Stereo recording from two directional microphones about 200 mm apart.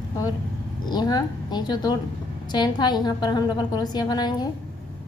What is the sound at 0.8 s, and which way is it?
A woman's voice, 20° left (ahead or behind).